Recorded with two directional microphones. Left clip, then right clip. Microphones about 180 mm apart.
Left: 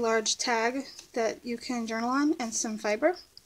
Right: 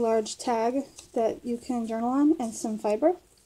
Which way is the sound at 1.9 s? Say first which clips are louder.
Right 3 dB; 15° left (ahead or behind).